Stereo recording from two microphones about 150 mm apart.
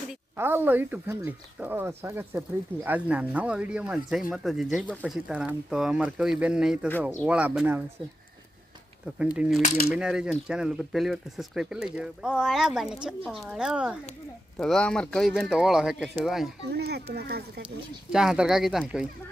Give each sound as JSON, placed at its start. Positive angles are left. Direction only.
{"t": 0.4, "sound": "speech", "side_deg": -15}
{"t": 9.9, "sound": "speech", "side_deg": -5}
{"t": 14.6, "sound": "speech", "side_deg": 5}
{"t": 16.7, "sound": "speech", "side_deg": -90}
{"t": 18.1, "sound": "speech", "side_deg": -5}